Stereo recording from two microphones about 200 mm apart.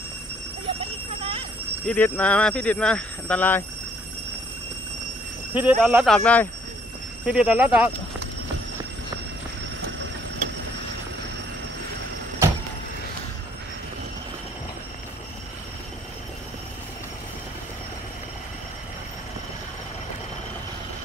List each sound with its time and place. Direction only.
0.7 s a sound: 30° right (ahead or behind)
1.9 s speech: 5° left (ahead or behind)
5.5 s speech: 10° right (ahead or behind)
7.2 s speech: 5° right (ahead or behind)